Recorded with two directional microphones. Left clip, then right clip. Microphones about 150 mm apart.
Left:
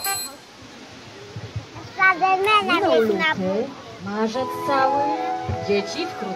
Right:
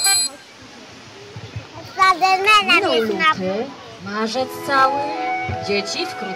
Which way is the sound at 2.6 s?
40° left (ahead or behind).